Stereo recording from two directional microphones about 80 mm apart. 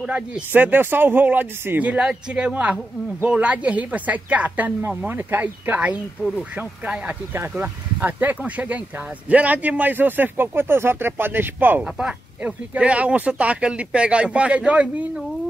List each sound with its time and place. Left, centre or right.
0.5 s speech: right
1.9 s speech: centre
11.8 s speech: centre